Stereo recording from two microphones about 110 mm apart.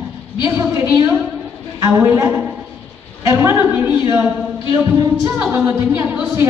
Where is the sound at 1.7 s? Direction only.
30° right (ahead or behind).